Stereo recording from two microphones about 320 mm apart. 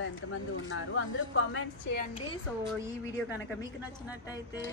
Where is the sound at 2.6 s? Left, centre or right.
Centre.